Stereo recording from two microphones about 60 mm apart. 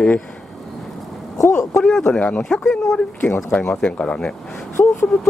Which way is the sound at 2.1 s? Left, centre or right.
Left.